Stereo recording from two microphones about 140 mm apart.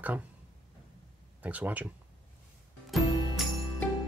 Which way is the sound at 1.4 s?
10° right (ahead or behind).